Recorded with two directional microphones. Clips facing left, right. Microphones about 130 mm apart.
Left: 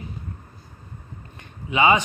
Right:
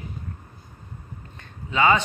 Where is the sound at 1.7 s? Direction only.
15° left (ahead or behind).